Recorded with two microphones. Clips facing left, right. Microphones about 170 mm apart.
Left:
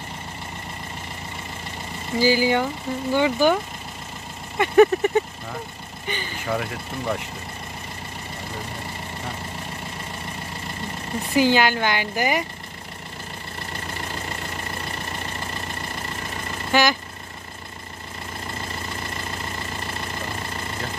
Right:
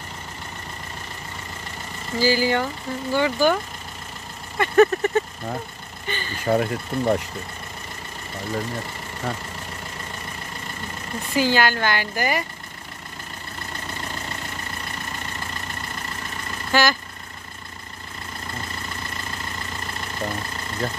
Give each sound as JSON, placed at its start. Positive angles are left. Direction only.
{"t": 2.1, "sound": "speech", "side_deg": 15}
{"t": 4.6, "sound": "speech", "side_deg": 10}
{"t": 6.4, "sound": "speech", "side_deg": -40}
{"t": 11.3, "sound": "speech", "side_deg": 15}
{"t": 16.7, "sound": "speech", "side_deg": 15}